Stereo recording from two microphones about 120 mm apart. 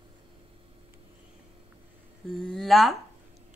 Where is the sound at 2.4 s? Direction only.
5° left (ahead or behind).